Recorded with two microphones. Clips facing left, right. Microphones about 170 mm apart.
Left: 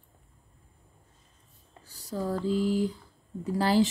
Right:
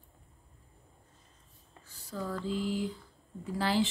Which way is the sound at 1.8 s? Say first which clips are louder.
Left 6 dB; 35° left (ahead or behind).